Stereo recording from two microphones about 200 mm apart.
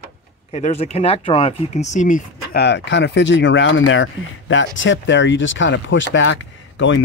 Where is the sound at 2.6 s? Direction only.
60° left (ahead or behind).